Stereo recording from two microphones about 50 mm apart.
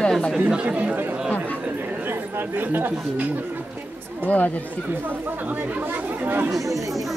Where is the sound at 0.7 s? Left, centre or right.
Right.